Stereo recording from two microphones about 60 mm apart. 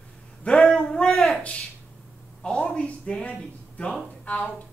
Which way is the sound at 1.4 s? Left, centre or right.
Centre.